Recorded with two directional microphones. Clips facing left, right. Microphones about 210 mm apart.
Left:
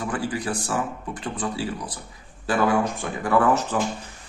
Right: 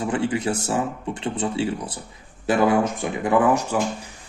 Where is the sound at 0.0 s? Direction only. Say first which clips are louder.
Right 4 dB; 25° right (ahead or behind).